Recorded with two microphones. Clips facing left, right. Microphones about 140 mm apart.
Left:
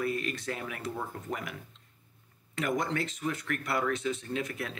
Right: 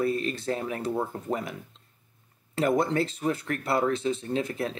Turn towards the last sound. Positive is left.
turn(degrees=-30)  # may be behind; listen again after turning